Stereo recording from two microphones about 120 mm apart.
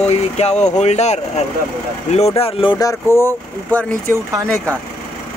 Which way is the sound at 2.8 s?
25° left (ahead or behind).